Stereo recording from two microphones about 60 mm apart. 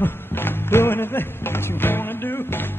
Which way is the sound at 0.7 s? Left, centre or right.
Left.